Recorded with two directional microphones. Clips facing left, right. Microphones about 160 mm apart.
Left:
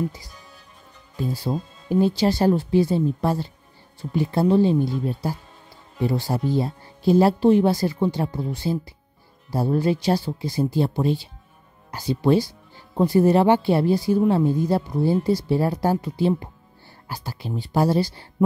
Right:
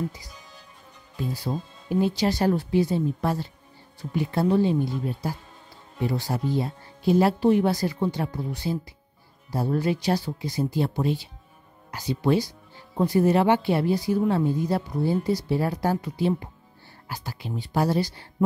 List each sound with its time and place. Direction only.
1.5 s speech: 35° left (ahead or behind)